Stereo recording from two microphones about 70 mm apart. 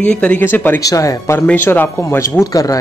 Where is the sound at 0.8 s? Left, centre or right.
Left.